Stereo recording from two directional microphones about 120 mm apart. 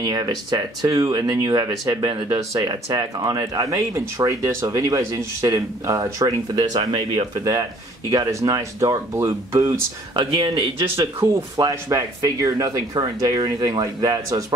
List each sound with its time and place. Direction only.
0.0 s speech: 30° right (ahead or behind)
10.1 s speech: 35° right (ahead or behind)